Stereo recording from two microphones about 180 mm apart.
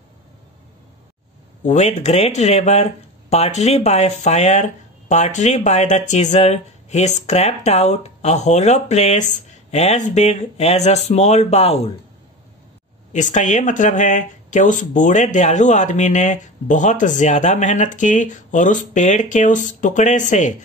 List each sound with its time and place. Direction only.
1.6 s speech: 40° left (ahead or behind)
13.1 s speech: 45° left (ahead or behind)